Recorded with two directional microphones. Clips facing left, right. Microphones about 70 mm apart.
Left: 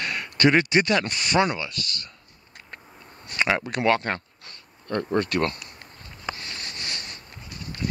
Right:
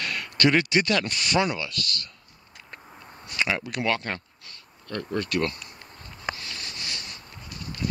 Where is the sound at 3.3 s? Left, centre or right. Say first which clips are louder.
Left 3 dB; left.